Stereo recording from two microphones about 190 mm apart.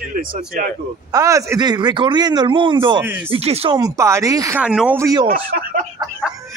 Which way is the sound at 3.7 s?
20° right (ahead or behind).